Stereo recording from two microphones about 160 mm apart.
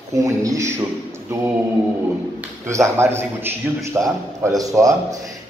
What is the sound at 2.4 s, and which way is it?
A man's voice, 20° right (ahead or behind).